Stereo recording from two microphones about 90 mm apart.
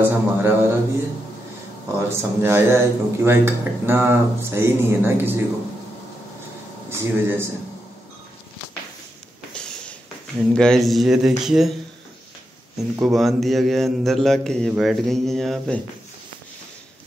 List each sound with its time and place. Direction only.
0.0 s speech: 25° right (ahead or behind)
2.0 s speech: 25° right (ahead or behind)
6.9 s a man's voice: 25° right (ahead or behind)
10.5 s a man's voice: 10° left (ahead or behind)
12.7 s a man's voice: centre (ahead or behind)